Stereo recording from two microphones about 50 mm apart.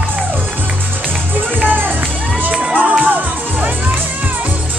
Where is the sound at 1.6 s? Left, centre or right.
Right.